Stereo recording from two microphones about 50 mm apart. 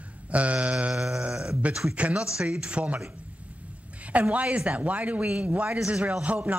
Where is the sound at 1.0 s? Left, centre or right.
Centre.